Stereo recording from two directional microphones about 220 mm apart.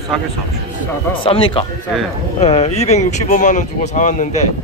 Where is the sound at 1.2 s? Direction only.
20° left (ahead or behind).